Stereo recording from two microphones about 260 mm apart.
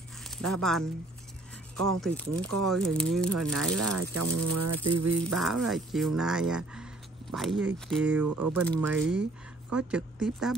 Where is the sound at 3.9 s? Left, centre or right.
Right.